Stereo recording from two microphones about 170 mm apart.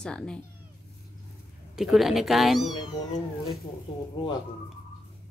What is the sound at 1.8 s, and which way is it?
Speech, centre (ahead or behind).